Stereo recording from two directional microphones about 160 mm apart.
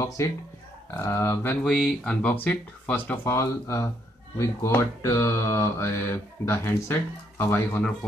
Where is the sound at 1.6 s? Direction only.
5° left (ahead or behind).